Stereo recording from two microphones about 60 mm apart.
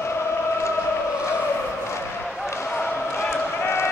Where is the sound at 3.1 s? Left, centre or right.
Left.